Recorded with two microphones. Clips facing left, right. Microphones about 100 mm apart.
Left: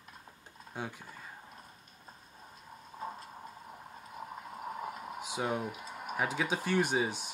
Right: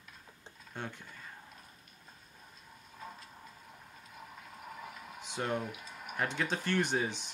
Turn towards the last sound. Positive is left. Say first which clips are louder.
# left 2 dB
turn(degrees=5)  # may be behind; listen again after turning